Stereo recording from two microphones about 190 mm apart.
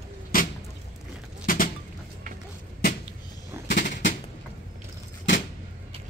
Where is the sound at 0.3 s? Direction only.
50° left (ahead or behind).